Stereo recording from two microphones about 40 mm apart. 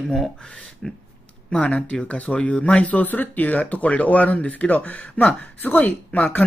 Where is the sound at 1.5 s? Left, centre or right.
Left.